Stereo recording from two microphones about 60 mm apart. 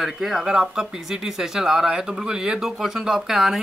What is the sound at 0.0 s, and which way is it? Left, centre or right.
Speech, centre.